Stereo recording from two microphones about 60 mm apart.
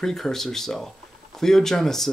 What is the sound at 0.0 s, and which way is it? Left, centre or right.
Speech, centre.